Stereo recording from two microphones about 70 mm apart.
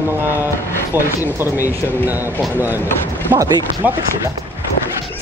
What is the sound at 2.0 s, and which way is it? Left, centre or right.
Speech, right.